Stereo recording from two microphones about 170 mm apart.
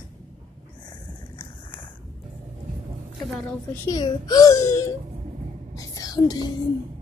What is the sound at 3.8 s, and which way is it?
A child's voice, 20° left (ahead or behind).